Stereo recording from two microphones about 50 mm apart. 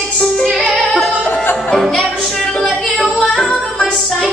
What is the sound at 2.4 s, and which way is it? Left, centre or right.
Music, centre.